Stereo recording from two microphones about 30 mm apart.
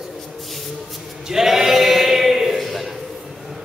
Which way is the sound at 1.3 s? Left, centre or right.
Centre.